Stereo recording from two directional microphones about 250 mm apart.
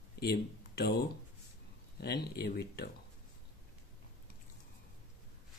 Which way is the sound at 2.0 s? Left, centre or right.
Left.